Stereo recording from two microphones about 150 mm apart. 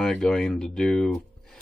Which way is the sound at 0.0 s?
5° left (ahead or behind).